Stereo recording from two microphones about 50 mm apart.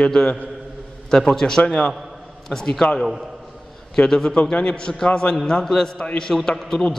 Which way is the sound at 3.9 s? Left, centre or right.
Centre.